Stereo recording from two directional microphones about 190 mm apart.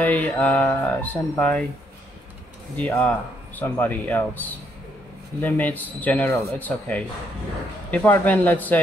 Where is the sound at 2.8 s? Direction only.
10° left (ahead or behind).